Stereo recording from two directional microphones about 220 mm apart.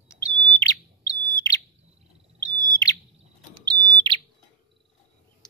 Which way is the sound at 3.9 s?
20° right (ahead or behind).